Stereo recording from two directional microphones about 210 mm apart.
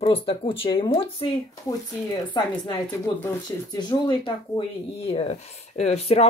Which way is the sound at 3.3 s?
15° left (ahead or behind).